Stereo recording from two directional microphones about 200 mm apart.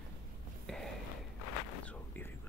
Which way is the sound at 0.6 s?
Centre (ahead or behind).